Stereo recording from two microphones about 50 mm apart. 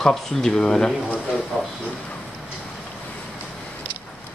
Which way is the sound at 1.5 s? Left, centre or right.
Centre.